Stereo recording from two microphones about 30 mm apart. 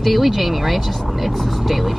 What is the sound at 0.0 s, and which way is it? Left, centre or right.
Speech, centre.